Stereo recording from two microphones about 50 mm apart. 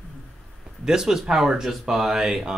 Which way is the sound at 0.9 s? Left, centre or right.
Centre.